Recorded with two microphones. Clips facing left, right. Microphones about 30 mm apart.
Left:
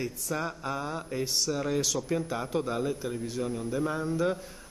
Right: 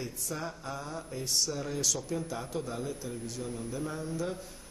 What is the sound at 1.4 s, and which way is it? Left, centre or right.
Speech, centre.